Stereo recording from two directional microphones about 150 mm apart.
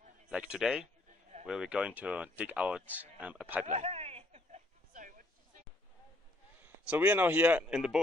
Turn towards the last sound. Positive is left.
turn(degrees=-5)  # may be behind; listen again after turning